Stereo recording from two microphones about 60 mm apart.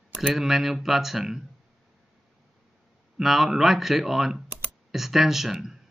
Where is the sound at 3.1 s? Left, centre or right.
Centre.